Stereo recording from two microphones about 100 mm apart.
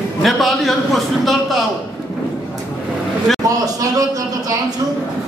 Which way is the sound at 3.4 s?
40° right (ahead or behind).